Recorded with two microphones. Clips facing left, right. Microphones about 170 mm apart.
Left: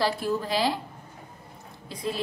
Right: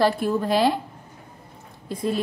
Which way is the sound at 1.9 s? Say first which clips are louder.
Right 6 dB; 50° right (ahead or behind).